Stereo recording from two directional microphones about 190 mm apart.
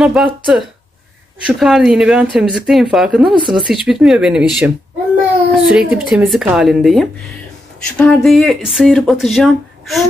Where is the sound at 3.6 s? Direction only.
Centre (ahead or behind).